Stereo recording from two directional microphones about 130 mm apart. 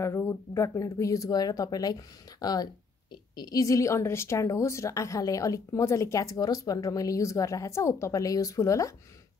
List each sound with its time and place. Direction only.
0.0 s speech: 20° left (ahead or behind)